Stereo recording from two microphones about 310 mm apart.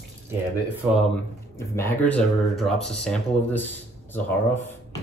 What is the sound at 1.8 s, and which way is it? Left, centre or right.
Speech, centre.